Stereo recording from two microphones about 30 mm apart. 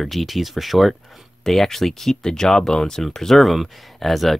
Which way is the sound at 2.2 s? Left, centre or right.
Centre.